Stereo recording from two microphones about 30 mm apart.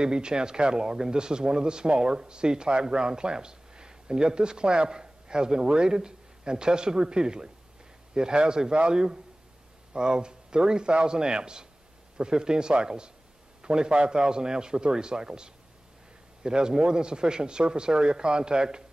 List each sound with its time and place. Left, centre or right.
0.0 s speech: right